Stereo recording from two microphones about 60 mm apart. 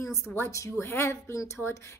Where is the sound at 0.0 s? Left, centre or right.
Left.